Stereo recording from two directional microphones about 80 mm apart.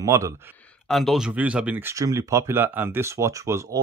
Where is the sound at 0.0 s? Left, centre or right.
Right.